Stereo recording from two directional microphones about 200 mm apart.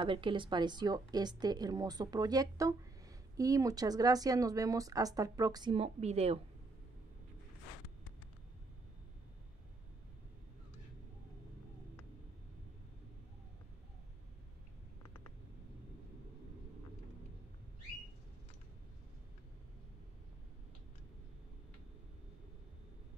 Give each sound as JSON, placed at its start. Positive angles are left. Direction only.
{"t": 0.0, "sound": "a woman's voice", "side_deg": -25}